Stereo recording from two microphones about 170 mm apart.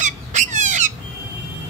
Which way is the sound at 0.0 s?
45° right (ahead or behind).